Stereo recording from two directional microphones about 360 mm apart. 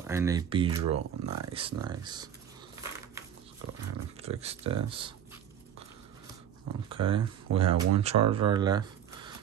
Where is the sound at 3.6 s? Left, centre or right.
Right.